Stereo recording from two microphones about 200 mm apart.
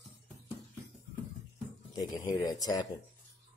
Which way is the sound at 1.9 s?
20° left (ahead or behind).